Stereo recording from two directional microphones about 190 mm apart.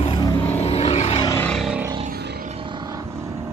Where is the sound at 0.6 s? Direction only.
35° left (ahead or behind).